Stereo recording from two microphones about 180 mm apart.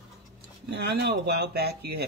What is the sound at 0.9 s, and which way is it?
Speech, 60° right (ahead or behind).